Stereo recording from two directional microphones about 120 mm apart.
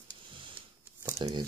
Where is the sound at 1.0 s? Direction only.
35° right (ahead or behind).